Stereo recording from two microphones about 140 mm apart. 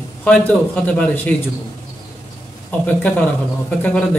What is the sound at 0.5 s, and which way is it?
Speech, 10° left (ahead or behind).